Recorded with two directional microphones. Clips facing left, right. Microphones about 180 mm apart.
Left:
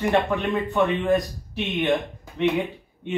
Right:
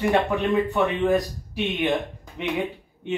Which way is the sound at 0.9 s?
15° right (ahead or behind).